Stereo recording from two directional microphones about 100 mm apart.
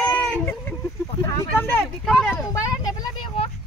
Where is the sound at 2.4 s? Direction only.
40° left (ahead or behind).